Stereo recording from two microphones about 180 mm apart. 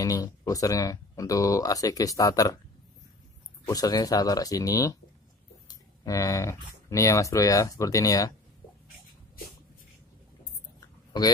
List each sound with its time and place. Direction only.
0.0 s speech: 20° left (ahead or behind)
3.6 s speech: 20° left (ahead or behind)
6.0 s speech: 15° left (ahead or behind)